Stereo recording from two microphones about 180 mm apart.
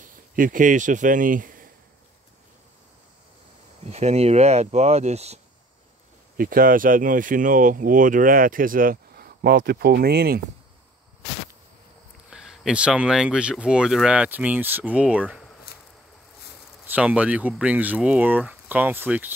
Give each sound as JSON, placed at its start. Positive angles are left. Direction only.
{"t": 0.1, "sound": "speech", "side_deg": -50}
{"t": 3.8, "sound": "speech", "side_deg": -35}
{"t": 6.3, "sound": "speech", "side_deg": -55}
{"t": 12.3, "sound": "speech", "side_deg": -5}
{"t": 15.7, "sound": "a sound", "side_deg": 60}
{"t": 16.8, "sound": "speech", "side_deg": -10}